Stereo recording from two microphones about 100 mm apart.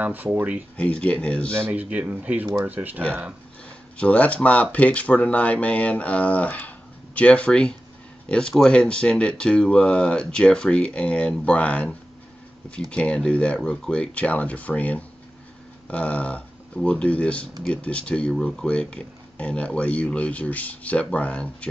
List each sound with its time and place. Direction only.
0.0 s speech: 20° right (ahead or behind)
0.7 s speech: 10° left (ahead or behind)
1.5 s speech: 20° right (ahead or behind)
4.0 s speech: 15° left (ahead or behind)